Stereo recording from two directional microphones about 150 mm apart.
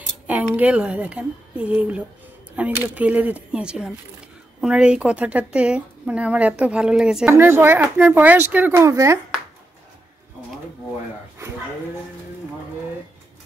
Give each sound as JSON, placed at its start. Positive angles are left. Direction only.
{"t": 0.3, "sound": "a woman's voice", "side_deg": -10}
{"t": 7.2, "sound": "a woman's voice", "side_deg": -15}